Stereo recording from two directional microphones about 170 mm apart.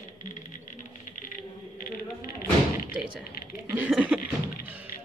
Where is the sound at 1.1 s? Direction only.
55° left (ahead or behind).